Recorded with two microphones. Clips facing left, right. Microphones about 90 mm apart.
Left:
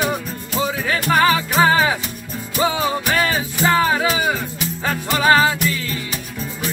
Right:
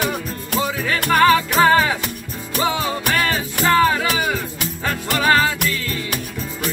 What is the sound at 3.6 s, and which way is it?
Music, 15° left (ahead or behind).